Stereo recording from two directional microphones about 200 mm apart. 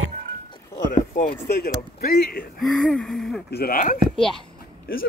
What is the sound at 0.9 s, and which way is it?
Speech, 40° left (ahead or behind).